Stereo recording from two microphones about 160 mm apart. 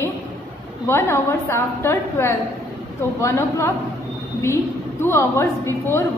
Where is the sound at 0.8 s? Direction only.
15° left (ahead or behind).